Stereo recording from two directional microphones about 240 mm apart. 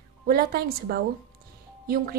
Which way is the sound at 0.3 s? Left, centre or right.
Right.